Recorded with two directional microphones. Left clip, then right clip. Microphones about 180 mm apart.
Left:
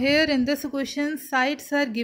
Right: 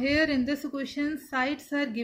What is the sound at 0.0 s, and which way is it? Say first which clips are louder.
A woman's voice: left 5 dB; 60° left (ahead or behind).